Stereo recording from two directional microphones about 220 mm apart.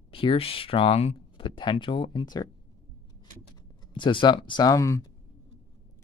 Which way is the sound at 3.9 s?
20° left (ahead or behind).